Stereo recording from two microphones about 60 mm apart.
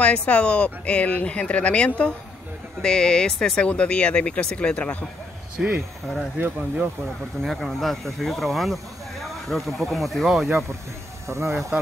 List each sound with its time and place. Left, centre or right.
0.0 s speech: left
5.6 s speech: centre
6.3 s speech: right
7.4 s speech: centre
11.2 s speech: right